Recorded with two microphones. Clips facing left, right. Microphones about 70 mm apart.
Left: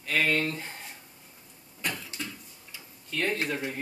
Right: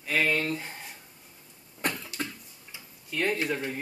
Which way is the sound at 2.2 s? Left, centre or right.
Right.